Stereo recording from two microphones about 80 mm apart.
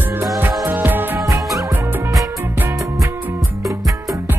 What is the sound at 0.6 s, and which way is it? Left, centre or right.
Music, right.